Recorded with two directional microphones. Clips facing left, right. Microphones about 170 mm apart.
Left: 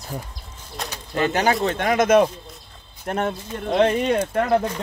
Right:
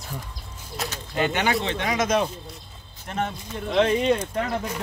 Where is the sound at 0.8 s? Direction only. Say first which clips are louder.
Right 1 dB; 5° right (ahead or behind).